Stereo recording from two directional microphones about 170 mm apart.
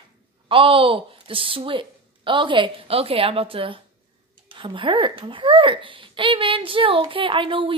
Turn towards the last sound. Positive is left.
turn(degrees=-30)  # may be behind; listen again after turning